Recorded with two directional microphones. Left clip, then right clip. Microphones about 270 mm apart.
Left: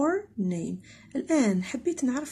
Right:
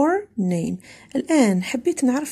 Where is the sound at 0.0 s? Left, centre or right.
Right.